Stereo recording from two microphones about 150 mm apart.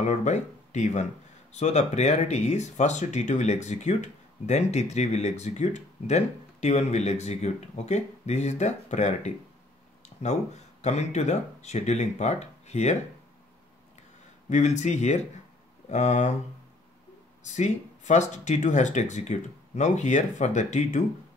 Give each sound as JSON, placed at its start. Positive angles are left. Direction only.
{"t": 0.0, "sound": "speech", "side_deg": 50}
{"t": 10.8, "sound": "speech", "side_deg": 50}
{"t": 14.5, "sound": "speech", "side_deg": 50}
{"t": 17.5, "sound": "speech", "side_deg": 50}